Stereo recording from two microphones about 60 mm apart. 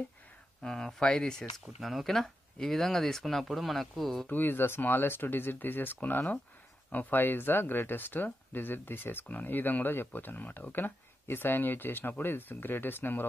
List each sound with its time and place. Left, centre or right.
0.6 s speech: centre
1.8 s speech: centre
4.3 s speech: left